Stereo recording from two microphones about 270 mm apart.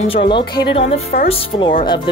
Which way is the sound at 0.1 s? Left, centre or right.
Centre.